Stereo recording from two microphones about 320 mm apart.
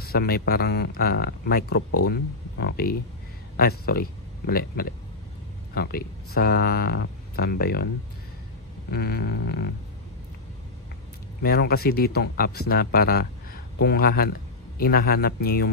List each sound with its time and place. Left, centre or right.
0.1 s speech: left
1.8 s speech: left
2.0 s speech: left
8.9 s a sound: left
11.4 s speech: left